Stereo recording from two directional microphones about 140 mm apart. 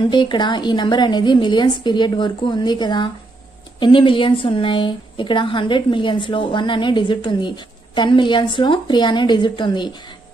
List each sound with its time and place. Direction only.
0.0 s a woman's voice: 35° left (ahead or behind)